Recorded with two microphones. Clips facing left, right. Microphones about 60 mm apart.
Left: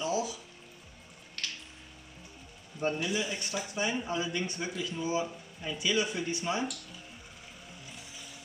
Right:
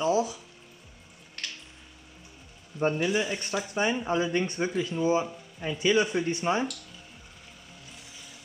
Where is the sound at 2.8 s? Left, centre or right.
Right.